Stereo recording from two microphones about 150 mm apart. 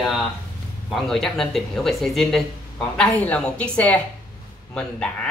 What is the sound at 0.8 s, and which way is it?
Speech, centre (ahead or behind).